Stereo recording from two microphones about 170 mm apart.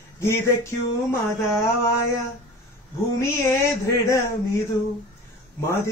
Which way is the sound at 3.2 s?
15° left (ahead or behind).